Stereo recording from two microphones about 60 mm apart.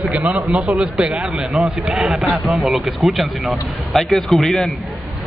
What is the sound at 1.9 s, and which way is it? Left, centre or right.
A man's voice, centre.